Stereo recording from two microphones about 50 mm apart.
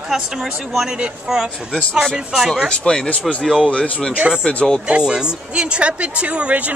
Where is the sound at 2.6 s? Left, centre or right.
Centre.